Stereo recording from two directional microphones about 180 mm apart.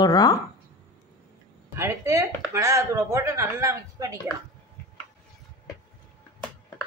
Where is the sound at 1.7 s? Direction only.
15° right (ahead or behind).